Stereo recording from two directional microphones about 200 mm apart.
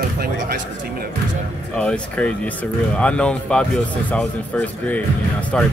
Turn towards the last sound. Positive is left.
turn(degrees=5)  # may be behind; listen again after turning